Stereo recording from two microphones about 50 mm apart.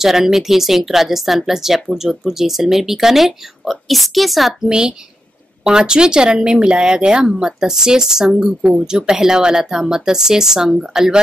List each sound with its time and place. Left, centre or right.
0.0 s speech: centre
4.6 s speech: centre